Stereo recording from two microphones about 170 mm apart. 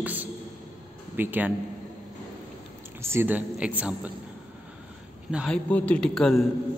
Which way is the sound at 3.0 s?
15° right (ahead or behind).